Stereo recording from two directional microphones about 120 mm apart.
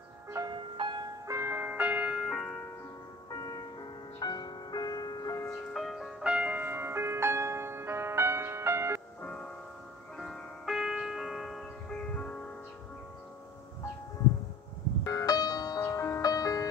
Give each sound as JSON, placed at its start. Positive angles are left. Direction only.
{"t": 0.5, "sound": "music", "side_deg": -40}
{"t": 1.2, "sound": "ice cream truck", "side_deg": -25}
{"t": 3.3, "sound": "music", "side_deg": 30}
{"t": 5.7, "sound": "music", "side_deg": 0}
{"t": 9.2, "sound": "music", "side_deg": 10}
{"t": 15.0, "sound": "music", "side_deg": 30}